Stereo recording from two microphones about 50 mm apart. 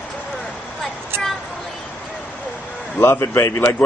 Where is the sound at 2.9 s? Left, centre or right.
Left.